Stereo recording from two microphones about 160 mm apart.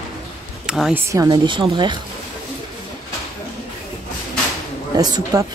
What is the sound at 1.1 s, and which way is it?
Speech, 25° right (ahead or behind).